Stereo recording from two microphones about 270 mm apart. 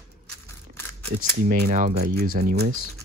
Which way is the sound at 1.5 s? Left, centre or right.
Right.